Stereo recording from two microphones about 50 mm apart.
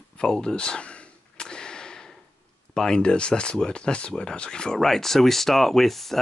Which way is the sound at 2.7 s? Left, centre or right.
Centre.